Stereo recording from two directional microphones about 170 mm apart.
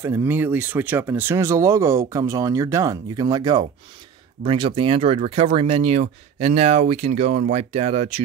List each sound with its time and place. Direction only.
0.0 s speech: 15° right (ahead or behind); by 8.2 s 35° right (ahead or behind)